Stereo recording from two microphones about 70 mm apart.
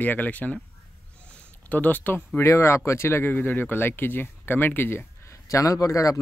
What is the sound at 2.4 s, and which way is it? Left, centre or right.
Speech, left.